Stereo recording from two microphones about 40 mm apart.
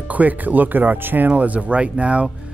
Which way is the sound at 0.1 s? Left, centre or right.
Right.